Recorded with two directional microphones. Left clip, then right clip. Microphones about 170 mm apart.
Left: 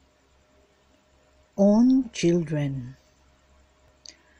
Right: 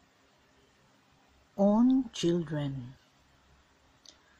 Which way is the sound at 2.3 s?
35° left (ahead or behind).